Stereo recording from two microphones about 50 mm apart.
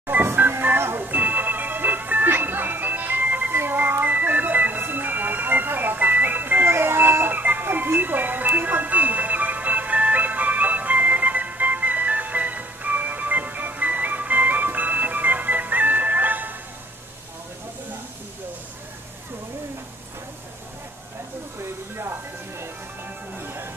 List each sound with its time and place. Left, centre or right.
0.0 s music: right
1.0 s music: right
3.5 s a sound: right
4.0 s music: right
7.3 s music: right
21.9 s music: right